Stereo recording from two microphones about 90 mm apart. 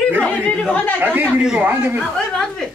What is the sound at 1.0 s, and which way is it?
Speech, 20° right (ahead or behind).